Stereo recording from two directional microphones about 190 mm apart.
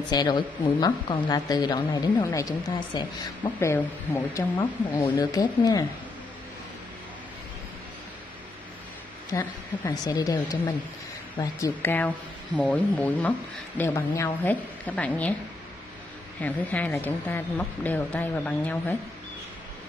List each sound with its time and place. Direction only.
0.1 s a woman's voice: 20° left (ahead or behind)
3.5 s a woman's voice: 10° left (ahead or behind)
9.3 s a woman's voice: 20° left (ahead or behind)
16.3 s a woman's voice: 10° left (ahead or behind)